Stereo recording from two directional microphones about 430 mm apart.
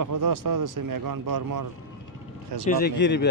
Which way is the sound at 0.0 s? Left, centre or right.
Right.